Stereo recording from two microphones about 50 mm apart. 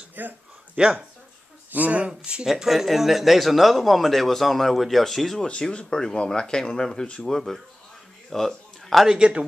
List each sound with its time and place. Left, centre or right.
0.2 s speech: right
0.8 s speech: right
2.4 s a man's voice: centre
5.5 s a man's voice: left
9.0 s speech: centre